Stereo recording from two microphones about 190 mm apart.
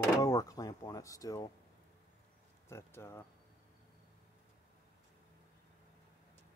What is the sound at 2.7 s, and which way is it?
Speech, 15° left (ahead or behind).